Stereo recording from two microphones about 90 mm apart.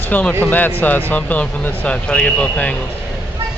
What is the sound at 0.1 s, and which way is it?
Speech, 20° left (ahead or behind).